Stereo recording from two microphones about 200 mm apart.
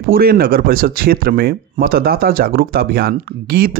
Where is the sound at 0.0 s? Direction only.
45° right (ahead or behind).